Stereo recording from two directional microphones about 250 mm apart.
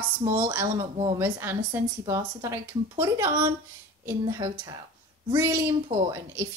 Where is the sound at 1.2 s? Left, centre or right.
Centre.